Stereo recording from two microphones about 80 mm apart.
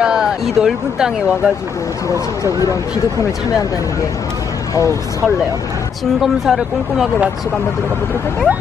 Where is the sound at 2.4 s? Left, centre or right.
Left.